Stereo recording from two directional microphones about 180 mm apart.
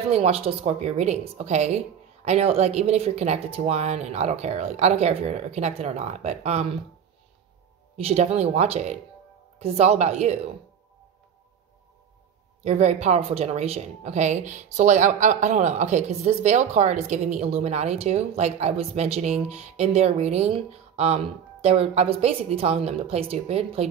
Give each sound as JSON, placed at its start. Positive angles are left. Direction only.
{"t": 0.1, "sound": "speech", "side_deg": -35}
{"t": 8.0, "sound": "speech", "side_deg": -35}
{"t": 12.6, "sound": "speech", "side_deg": -35}